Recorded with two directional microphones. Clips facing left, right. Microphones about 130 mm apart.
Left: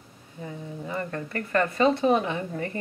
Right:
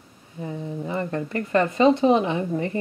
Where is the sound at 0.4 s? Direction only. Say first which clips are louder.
Right 6 dB; 25° right (ahead or behind).